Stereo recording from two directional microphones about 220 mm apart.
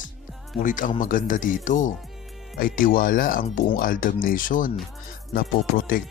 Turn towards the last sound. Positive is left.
turn(degrees=40)  # may be behind; listen again after turning